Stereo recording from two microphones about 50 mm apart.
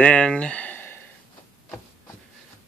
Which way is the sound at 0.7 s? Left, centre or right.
Left.